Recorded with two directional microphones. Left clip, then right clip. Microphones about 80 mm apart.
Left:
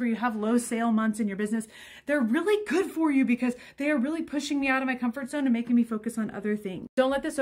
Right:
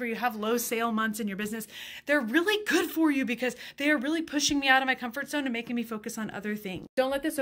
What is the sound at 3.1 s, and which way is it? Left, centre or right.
Speech, centre.